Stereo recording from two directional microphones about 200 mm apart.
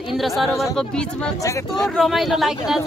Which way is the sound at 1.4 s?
15° left (ahead or behind).